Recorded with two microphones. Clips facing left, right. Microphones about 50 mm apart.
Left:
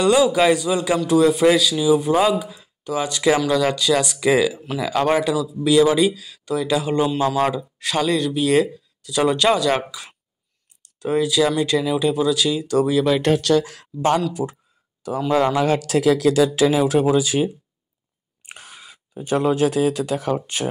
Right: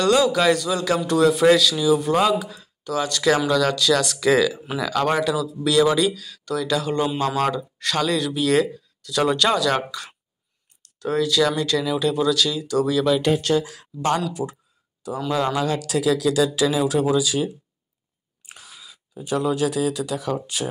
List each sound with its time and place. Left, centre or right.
0.0 s speech: centre
0.9 s speech: centre
12.5 s speech: left
12.8 s speech: centre
13.3 s speech: left
14.3 s speech: left
18.4 s speech: left